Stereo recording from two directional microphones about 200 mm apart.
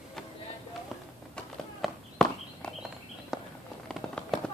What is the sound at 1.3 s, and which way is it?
Walk, 5° left (ahead or behind).